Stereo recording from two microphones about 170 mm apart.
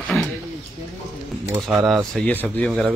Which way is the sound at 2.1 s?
10° left (ahead or behind).